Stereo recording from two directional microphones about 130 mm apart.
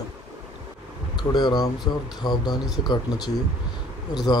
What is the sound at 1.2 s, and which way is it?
Speech, 35° left (ahead or behind).